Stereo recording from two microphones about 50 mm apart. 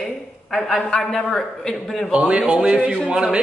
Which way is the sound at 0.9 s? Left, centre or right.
Centre.